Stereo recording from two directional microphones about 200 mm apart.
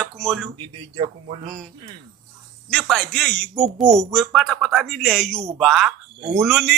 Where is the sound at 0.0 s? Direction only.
Centre (ahead or behind).